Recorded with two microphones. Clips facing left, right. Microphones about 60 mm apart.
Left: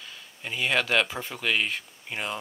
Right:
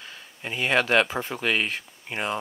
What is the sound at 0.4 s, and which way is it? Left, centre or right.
Speech, centre.